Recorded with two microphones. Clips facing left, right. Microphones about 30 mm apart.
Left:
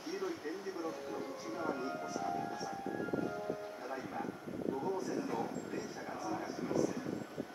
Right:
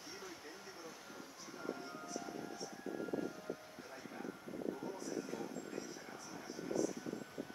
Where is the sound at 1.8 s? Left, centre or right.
Left.